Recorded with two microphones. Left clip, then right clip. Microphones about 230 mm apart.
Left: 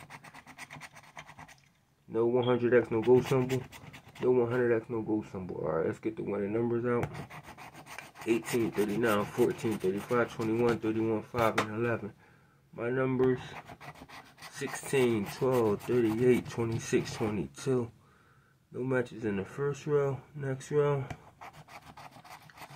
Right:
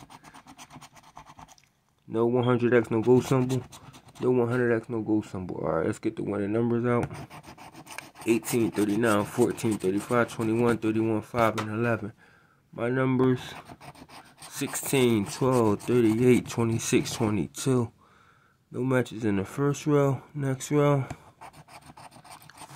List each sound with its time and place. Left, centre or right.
2.1 s speech: right
7.0 s rub: centre
9.0 s speech: right
21.1 s writing: centre